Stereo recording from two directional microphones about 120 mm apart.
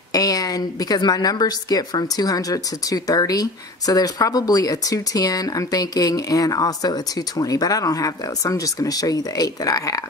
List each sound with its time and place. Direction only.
0.1 s a woman's voice: 30° left (ahead or behind)